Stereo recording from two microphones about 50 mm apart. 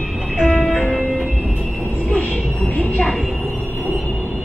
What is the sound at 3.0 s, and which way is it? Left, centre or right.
Train, centre.